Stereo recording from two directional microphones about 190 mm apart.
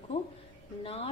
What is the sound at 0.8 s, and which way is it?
Speech, 35° left (ahead or behind).